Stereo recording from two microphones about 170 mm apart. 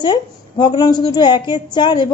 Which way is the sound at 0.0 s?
25° left (ahead or behind).